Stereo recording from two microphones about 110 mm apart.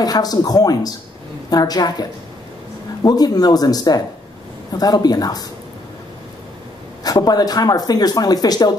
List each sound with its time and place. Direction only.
0.0 s speech: 35° left (ahead or behind)
7.0 s speech: 35° left (ahead or behind)